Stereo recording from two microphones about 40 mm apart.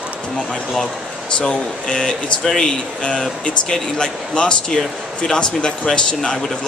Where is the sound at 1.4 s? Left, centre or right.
Left.